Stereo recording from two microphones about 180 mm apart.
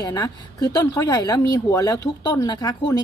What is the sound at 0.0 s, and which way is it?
Speech, 20° left (ahead or behind).